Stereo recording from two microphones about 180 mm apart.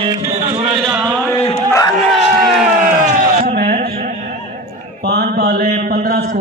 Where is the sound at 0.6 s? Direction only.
5° right (ahead or behind).